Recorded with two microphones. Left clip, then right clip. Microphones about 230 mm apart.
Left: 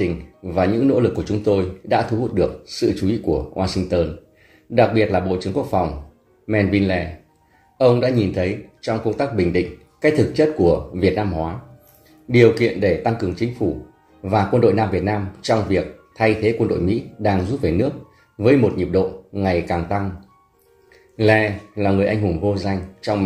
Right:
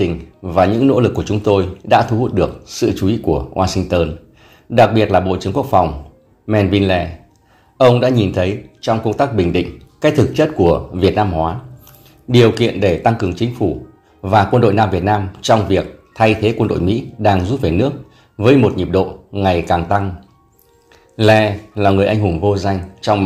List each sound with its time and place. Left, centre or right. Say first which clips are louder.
0.5 s speech: right 5 dB; right
21.2 s speech: right 5 dB; right